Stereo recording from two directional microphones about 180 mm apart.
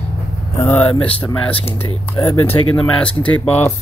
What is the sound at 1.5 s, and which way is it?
Speech, 30° left (ahead or behind).